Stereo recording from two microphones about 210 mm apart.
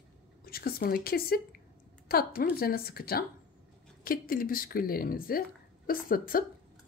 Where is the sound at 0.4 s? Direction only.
45° left (ahead or behind).